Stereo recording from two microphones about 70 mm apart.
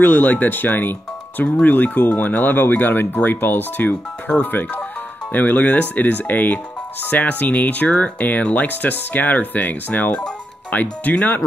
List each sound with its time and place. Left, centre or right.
0.0 s speech: left